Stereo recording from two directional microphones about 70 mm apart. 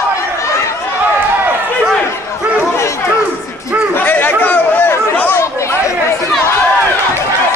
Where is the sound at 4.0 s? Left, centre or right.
Left.